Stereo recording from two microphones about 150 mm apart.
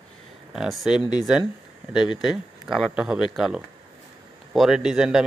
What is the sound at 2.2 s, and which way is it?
A man's voice, centre (ahead or behind).